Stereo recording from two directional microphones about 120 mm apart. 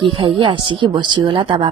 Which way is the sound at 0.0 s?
45° right (ahead or behind).